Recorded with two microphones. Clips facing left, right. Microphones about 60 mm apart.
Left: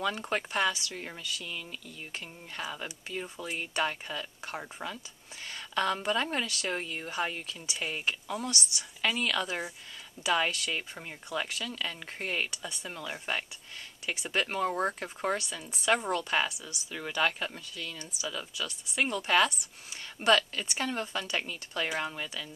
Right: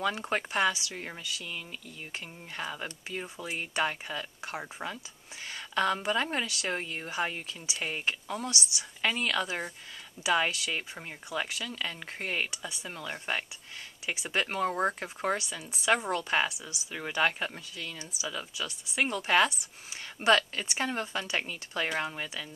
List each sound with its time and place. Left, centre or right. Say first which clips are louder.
0.0 s speech: right 1 dB; centre
2.6 s a woman's voice: right 1 dB; centre